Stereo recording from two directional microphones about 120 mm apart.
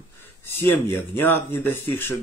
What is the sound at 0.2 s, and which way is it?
Speech, 20° left (ahead or behind).